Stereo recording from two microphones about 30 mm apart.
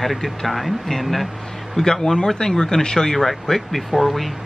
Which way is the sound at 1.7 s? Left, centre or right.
Centre.